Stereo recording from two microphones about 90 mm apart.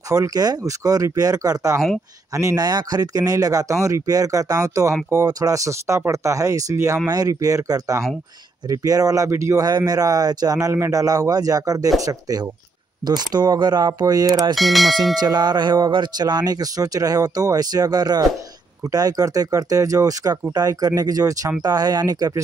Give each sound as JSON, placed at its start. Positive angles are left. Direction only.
{"t": 0.1, "sound": "speech", "side_deg": -40}
{"t": 9.7, "sound": "speech", "side_deg": -50}
{"t": 14.5, "sound": "speech", "side_deg": 0}
{"t": 15.1, "sound": "speech", "side_deg": -50}